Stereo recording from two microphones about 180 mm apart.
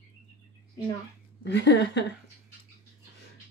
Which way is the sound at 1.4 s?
70° left (ahead or behind).